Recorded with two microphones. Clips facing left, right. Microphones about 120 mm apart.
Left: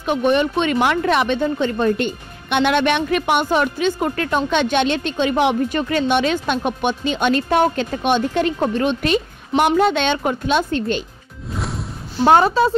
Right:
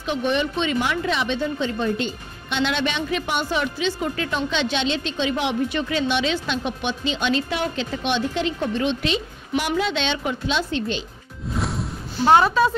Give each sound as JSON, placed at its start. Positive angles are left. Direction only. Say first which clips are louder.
{"t": 0.0, "sound": "speech", "louder": "left 6 dB", "side_deg": 50}
{"t": 11.5, "sound": "music", "louder": "right 1 dB", "side_deg": 0}
{"t": 12.3, "sound": "a woman's voice", "louder": "left 3 dB", "side_deg": 40}